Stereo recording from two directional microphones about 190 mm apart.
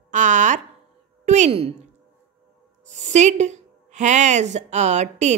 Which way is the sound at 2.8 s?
35° right (ahead or behind).